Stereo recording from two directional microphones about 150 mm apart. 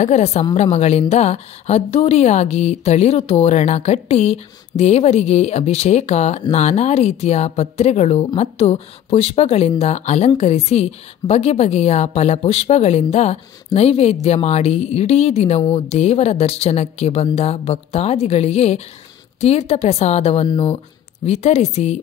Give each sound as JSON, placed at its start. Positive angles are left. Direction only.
{"t": 0.0, "sound": "speech", "side_deg": 45}
{"t": 20.4, "sound": "speech", "side_deg": 30}
{"t": 21.3, "sound": "speech", "side_deg": 50}